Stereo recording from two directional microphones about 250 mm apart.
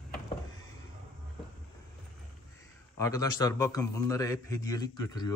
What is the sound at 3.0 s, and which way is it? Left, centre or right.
A man's voice, centre.